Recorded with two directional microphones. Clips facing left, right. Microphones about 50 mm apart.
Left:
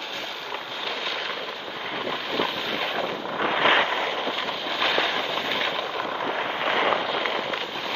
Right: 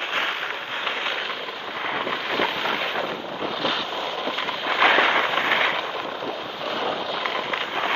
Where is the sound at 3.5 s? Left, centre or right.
Left.